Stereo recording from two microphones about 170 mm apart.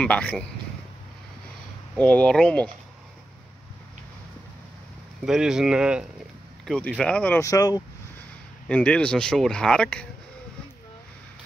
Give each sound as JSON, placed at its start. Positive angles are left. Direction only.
{"t": 0.0, "sound": "speech", "side_deg": 10}
{"t": 2.0, "sound": "speech", "side_deg": 5}
{"t": 5.2, "sound": "speech", "side_deg": -5}
{"t": 7.4, "sound": "speech", "side_deg": 20}
{"t": 8.6, "sound": "speech", "side_deg": 5}